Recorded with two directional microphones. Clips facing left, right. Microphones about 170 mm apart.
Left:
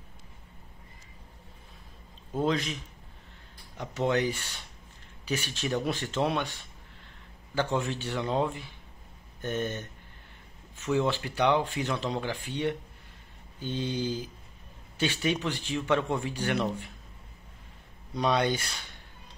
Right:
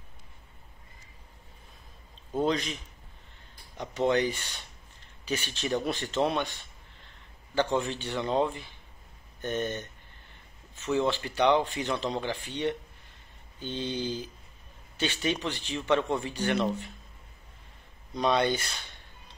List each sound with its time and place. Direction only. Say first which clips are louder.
2.3 s speech: even; centre (ahead or behind)
7.5 s speech: right 2 dB; 5° left (ahead or behind)
18.1 s speech: right 1 dB; 10° left (ahead or behind)